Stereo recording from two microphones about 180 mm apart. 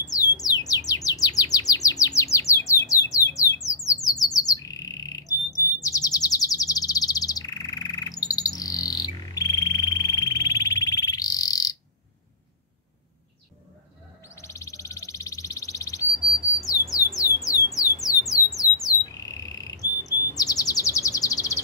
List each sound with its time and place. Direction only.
0.0 s chirp: 20° left (ahead or behind)
14.3 s bird: 15° left (ahead or behind)
16.5 s squawk: 20° left (ahead or behind)
19.8 s chirp: 20° left (ahead or behind)